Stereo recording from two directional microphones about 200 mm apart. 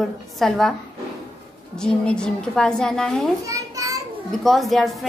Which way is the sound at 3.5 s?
15° right (ahead or behind).